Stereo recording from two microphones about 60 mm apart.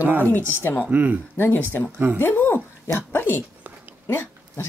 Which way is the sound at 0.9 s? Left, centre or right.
Right.